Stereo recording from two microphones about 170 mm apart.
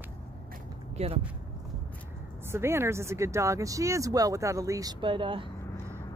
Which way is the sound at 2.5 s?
15° right (ahead or behind).